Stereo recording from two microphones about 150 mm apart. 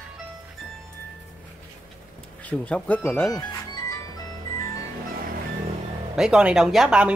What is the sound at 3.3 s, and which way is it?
Music, 20° left (ahead or behind).